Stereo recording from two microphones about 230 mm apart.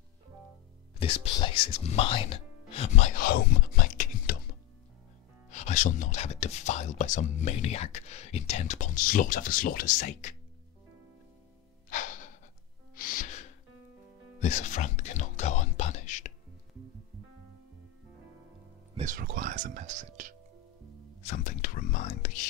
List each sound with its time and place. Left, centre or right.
0.9 s speech: left
5.5 s speech: left
11.9 s music: left
14.4 s whispering: left
18.9 s speech: right
21.2 s speech: left